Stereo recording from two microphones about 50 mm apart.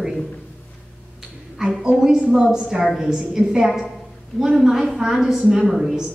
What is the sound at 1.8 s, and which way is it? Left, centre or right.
A woman's voice, centre.